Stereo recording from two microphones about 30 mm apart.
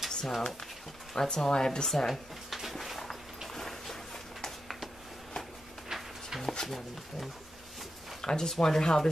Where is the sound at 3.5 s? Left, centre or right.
Centre.